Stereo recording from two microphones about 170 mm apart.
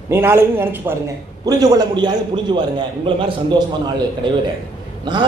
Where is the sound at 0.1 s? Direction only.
15° right (ahead or behind).